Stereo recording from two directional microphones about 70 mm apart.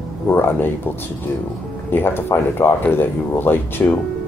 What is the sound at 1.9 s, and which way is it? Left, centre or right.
Speech, left.